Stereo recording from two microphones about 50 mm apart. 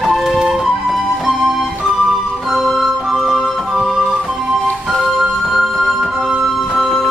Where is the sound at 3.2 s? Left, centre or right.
Centre.